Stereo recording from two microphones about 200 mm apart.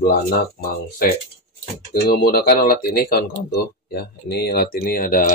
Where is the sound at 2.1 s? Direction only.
50° left (ahead or behind).